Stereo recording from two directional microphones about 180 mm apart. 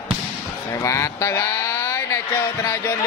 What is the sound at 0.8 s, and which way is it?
Speech, 15° left (ahead or behind).